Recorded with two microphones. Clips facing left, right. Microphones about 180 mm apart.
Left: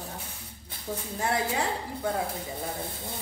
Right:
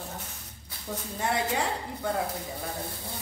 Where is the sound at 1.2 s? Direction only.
Centre (ahead or behind).